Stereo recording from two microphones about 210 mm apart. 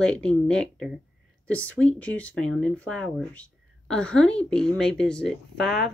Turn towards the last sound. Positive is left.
turn(degrees=0)  # may be behind; listen again after turning